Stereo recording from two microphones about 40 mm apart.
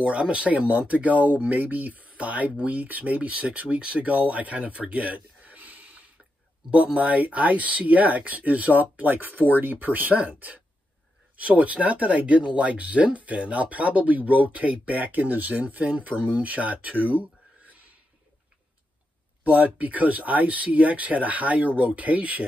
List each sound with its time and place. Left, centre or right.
0.0 s speech: right
19.4 s speech: right